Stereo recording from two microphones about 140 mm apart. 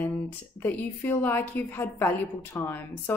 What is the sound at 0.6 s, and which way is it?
Speech, 15° left (ahead or behind).